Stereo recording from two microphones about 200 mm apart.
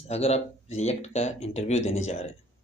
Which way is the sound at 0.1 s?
30° left (ahead or behind).